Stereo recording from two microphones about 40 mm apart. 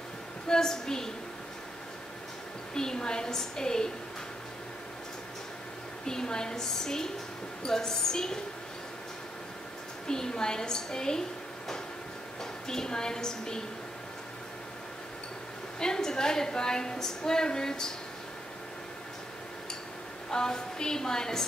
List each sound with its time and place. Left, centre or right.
0.5 s a woman's voice: centre
2.7 s a woman's voice: centre
6.0 s a woman's voice: centre
10.0 s a woman's voice: centre
12.6 s a woman's voice: centre
15.8 s a woman's voice: centre
20.2 s a woman's voice: centre